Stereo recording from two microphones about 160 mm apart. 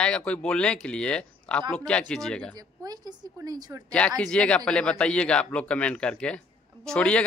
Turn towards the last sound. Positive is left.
turn(degrees=5)  # may be behind; listen again after turning